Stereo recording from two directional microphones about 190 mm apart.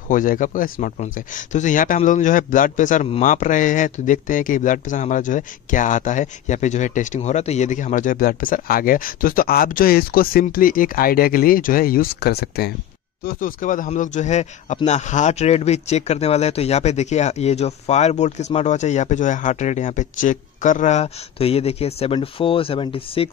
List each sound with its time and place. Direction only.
0.1 s speech: 45° left (ahead or behind); by 23.3 s 30° left (ahead or behind)